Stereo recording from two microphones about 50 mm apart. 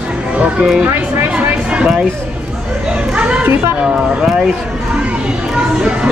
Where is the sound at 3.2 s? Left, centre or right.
Right.